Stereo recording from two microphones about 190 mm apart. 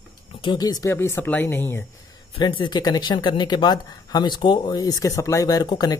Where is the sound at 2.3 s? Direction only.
25° left (ahead or behind).